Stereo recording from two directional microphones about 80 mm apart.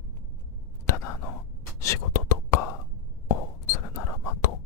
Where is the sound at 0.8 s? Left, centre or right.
Left.